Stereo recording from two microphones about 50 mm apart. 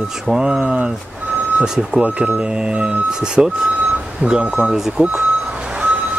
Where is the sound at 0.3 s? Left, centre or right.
Centre.